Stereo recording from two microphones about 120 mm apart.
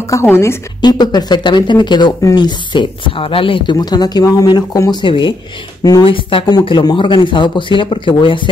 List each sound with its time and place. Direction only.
0.1 s a woman's voice: 20° left (ahead or behind)
0.7 s speech: 35° left (ahead or behind)
3.7 s speech: 35° left (ahead or behind)
5.0 s speech: 45° left (ahead or behind)